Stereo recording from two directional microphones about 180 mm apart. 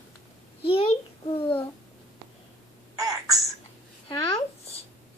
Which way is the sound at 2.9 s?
20° right (ahead or behind).